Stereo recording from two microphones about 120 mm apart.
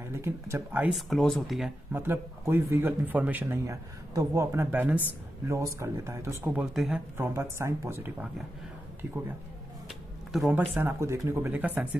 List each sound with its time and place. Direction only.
0.1 s a man's voice: 20° right (ahead or behind)
0.9 s speech: centre (ahead or behind)
1.9 s a man's voice: 20° right (ahead or behind)
3.6 s a man's voice: 25° right (ahead or behind)
6.6 s speech: 5° right (ahead or behind)
7.2 s a man's voice: 20° right (ahead or behind)
9.8 s a sound: centre (ahead or behind)
10.5 s speech: 15° right (ahead or behind)